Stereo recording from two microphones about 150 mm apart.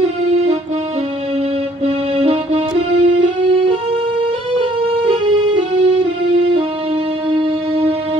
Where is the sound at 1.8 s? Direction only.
40° right (ahead or behind).